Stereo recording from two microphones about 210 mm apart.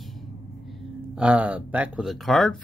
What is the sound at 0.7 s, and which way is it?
Speech, centre (ahead or behind).